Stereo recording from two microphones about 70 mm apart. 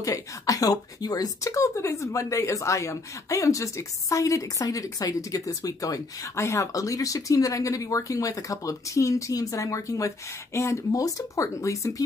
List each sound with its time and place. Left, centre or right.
0.0 s speech: left